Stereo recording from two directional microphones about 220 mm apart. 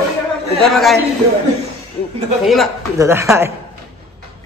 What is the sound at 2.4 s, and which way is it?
Speech, centre (ahead or behind).